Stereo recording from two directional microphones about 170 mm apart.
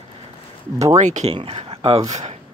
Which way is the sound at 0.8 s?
40° right (ahead or behind).